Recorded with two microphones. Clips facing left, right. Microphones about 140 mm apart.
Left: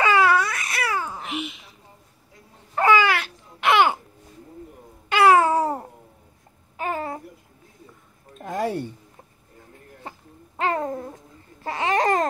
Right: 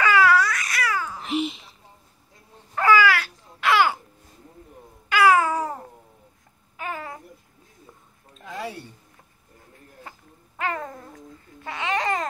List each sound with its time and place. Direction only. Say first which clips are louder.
0.0 s babbling: even; 25° left (ahead or behind)
1.2 s babbling: right 5 dB; 30° right (ahead or behind)
2.7 s babbling: even; 25° left (ahead or behind)
5.1 s babbling: left 2 dB; 25° left (ahead or behind)
8.4 s a sound: left 8 dB; 50° left (ahead or behind)
10.6 s babbling: left 5 dB; 30° left (ahead or behind)